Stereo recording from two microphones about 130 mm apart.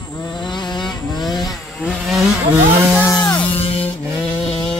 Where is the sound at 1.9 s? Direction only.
Centre (ahead or behind).